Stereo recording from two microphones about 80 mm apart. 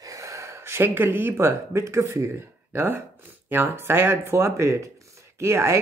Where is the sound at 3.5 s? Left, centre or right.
Right.